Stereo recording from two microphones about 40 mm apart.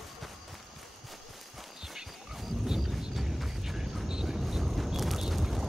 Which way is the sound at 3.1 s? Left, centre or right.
Centre.